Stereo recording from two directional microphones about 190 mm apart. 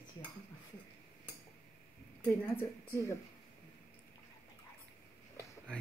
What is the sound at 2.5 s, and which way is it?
Speech, 15° left (ahead or behind).